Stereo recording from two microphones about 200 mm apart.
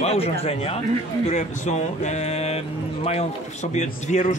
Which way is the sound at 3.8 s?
35° left (ahead or behind).